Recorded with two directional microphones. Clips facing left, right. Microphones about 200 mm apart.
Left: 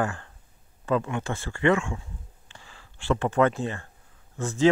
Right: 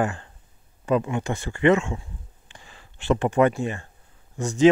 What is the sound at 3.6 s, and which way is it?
Speech, 15° right (ahead or behind).